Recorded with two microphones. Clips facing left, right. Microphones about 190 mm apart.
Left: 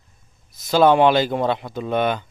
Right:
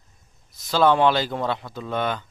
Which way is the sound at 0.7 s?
15° left (ahead or behind).